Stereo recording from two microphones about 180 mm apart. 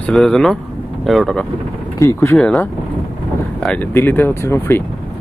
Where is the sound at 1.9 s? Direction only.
15° left (ahead or behind).